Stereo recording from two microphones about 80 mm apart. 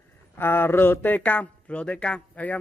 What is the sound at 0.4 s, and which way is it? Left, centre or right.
Speech, left.